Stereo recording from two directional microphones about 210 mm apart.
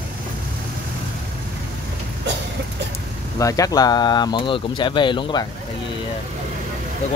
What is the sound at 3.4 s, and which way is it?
Speech, 15° left (ahead or behind).